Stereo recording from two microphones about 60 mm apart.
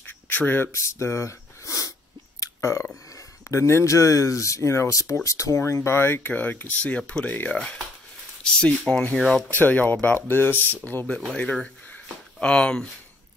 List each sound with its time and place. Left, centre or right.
0.0 s duck: left
0.7 s speech: left
2.4 s burping: left
3.2 s speech: left
6.3 s speech: left
9.5 s speech: left
11.1 s speech: centre
11.9 s a sound: left